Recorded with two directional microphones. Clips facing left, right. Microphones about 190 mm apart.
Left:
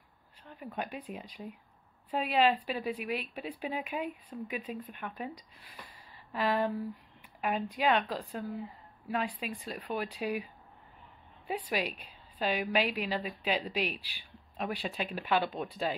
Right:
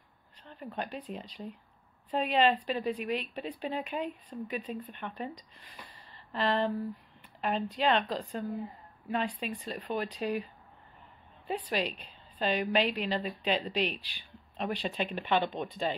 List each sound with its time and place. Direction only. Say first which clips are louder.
0.5 s a woman's voice: right 1 dB; 10° left (ahead or behind)